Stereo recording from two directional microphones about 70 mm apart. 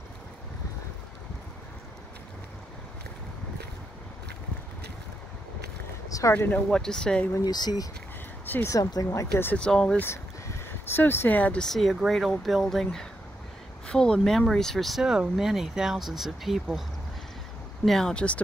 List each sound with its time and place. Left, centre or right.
6.0 s a sound: left
6.5 s speech: centre
7.4 s speech: left
8.6 s speech: left
9.6 s speech: centre
10.0 s a sound: left
11.6 s speech: centre
17.8 s speech: centre